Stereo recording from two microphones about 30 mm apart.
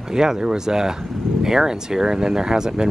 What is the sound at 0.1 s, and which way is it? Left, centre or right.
Speech, right.